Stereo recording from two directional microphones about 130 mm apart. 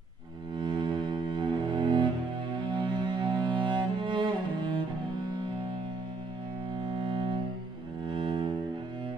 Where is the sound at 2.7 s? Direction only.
35° right (ahead or behind).